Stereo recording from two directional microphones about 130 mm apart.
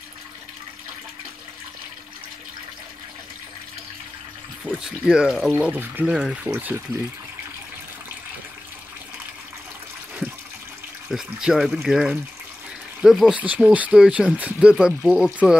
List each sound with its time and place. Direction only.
4.6 s speech: 5° right (ahead or behind)
5.5 s speech: 15° right (ahead or behind)
11.1 s speech: 5° right (ahead or behind)